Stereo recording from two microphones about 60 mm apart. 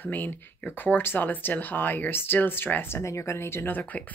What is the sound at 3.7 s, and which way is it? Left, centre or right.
Speech, left.